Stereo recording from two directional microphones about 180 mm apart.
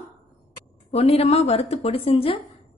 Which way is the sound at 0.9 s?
35° left (ahead or behind).